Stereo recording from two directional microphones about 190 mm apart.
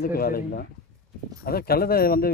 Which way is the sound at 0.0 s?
50° left (ahead or behind).